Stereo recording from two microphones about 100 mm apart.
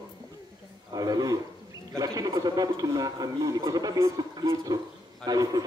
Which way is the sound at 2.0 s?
40° right (ahead or behind).